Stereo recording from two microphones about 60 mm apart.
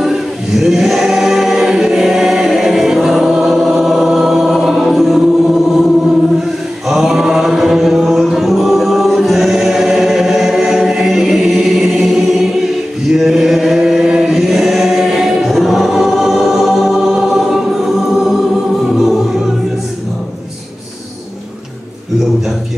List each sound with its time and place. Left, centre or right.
0.0 s choir: centre
6.9 s music: centre
13.1 s chant: centre